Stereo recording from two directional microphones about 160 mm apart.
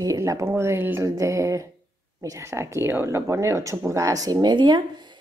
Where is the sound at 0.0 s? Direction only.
20° right (ahead or behind).